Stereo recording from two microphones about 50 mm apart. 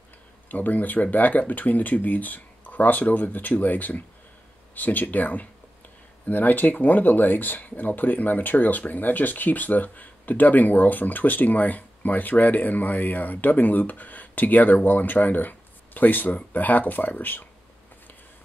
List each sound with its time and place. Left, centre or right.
0.5 s speech: left